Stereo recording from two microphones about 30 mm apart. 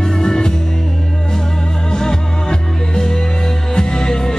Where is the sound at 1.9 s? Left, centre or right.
Left.